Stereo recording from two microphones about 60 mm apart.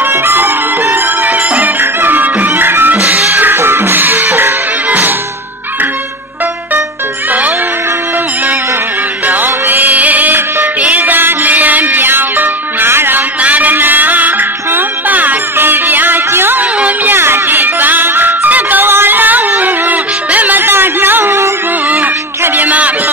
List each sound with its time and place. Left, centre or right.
0.0 s music: right
7.2 s music: right
9.2 s music: right
13.4 s music: right
16.7 s music: right
17.1 s music: right
22.4 s a sound: right